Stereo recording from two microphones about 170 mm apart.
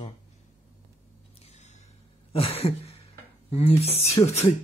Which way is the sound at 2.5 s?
35° left (ahead or behind).